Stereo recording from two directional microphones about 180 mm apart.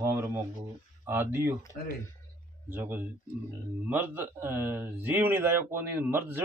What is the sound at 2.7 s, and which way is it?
Speech, 10° right (ahead or behind).